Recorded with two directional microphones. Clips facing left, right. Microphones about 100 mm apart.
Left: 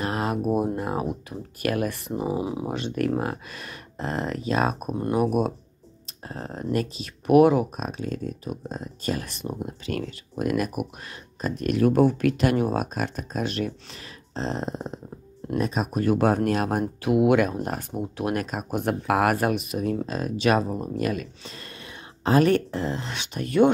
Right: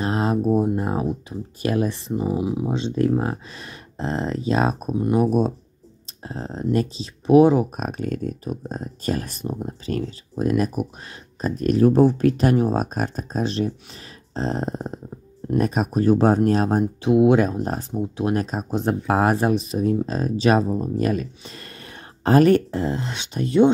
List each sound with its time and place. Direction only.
0.0 s a sound: 30° right (ahead or behind)
0.4 s a sound: 10° left (ahead or behind)
0.7 s a sound: 30° right (ahead or behind)
1.6 s speech: 25° right (ahead or behind)
2.0 s speech: 15° left (ahead or behind)
2.3 s speech: centre (ahead or behind)
2.7 s speech: 20° right (ahead or behind)
5.1 s speech: 5° left (ahead or behind)
6.2 s speech: 25° right (ahead or behind)
7.7 s speech: 50° right (ahead or behind); by 23.7 s 30° right (ahead or behind)